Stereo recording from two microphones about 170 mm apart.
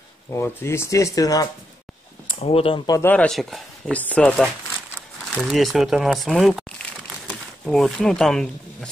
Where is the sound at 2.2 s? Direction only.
35° left (ahead or behind).